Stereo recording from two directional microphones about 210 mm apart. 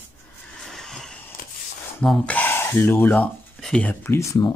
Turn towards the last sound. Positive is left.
turn(degrees=15)  # may be behind; listen again after turning